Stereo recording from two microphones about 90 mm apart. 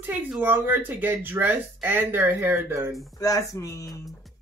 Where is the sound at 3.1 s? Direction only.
40° left (ahead or behind).